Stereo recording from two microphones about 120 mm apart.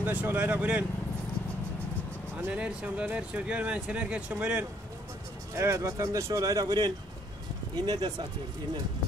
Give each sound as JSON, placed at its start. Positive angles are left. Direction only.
{"t": 0.0, "sound": "speech", "side_deg": -15}
{"t": 2.4, "sound": "speech", "side_deg": -10}
{"t": 5.6, "sound": "speech", "side_deg": -25}